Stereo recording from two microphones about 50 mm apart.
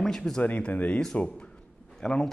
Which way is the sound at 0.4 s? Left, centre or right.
Left.